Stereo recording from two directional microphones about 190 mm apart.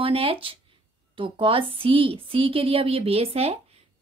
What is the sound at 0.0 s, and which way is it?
Speech, 30° right (ahead or behind).